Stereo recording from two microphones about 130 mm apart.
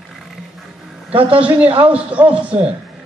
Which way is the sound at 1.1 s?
45° right (ahead or behind).